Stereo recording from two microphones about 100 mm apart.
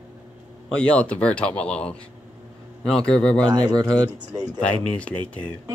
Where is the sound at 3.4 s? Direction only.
45° right (ahead or behind).